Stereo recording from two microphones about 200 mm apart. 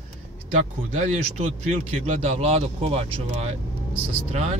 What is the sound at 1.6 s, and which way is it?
Speech, 35° right (ahead or behind).